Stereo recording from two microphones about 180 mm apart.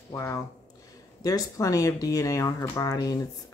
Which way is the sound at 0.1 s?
15° left (ahead or behind).